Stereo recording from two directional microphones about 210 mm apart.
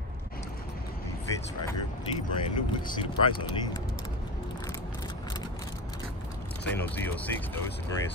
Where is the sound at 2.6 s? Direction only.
25° left (ahead or behind).